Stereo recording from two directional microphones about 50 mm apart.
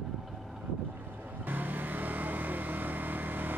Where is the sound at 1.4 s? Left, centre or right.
Right.